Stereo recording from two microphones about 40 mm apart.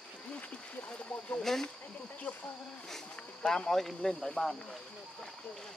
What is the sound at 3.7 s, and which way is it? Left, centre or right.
Speech, centre.